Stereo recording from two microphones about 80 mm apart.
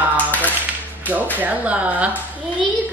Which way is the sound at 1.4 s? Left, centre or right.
Centre.